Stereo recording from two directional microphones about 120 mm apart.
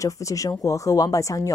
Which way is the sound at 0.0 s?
25° left (ahead or behind).